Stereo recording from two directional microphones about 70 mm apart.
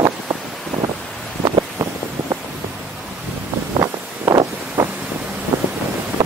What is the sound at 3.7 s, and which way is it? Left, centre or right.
Vehicle, right.